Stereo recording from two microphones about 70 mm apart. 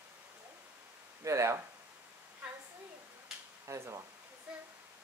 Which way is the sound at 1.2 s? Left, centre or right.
Right.